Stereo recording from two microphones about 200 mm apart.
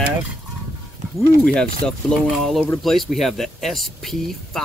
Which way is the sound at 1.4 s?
5° left (ahead or behind).